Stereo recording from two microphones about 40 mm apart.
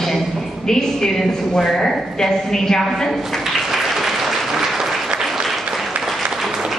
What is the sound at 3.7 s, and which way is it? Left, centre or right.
Applause, centre.